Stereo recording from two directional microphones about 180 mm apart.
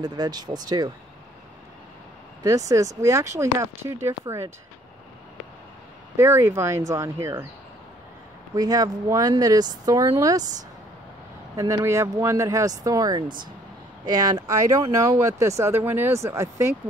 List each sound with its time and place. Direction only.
0.0 s speech: 20° right (ahead or behind)
2.4 s speech: 15° right (ahead or behind)
6.1 s speech: 15° right (ahead or behind)
8.5 s speech: 20° right (ahead or behind)
11.5 s speech: 15° right (ahead or behind)